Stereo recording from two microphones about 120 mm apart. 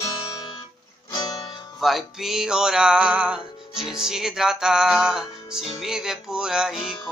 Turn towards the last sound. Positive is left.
turn(degrees=-5)  # may be behind; listen again after turning